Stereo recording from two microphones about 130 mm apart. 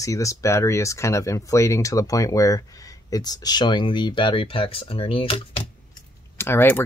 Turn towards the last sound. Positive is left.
turn(degrees=15)  # may be behind; listen again after turning